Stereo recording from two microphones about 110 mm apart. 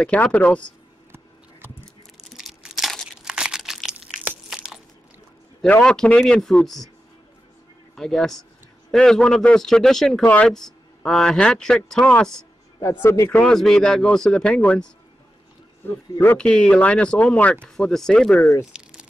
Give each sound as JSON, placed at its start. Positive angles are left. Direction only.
{"t": 0.0, "sound": "speech", "side_deg": 10}
{"t": 2.3, "sound": "crumpling", "side_deg": 0}
{"t": 4.5, "sound": "a sound", "side_deg": -5}
{"t": 5.8, "sound": "speech", "side_deg": 5}
{"t": 7.9, "sound": "a man's voice", "side_deg": 5}
{"t": 12.8, "sound": "a man's voice", "side_deg": 25}
{"t": 13.4, "sound": "speech", "side_deg": 5}
{"t": 18.7, "sound": "crumpling", "side_deg": -10}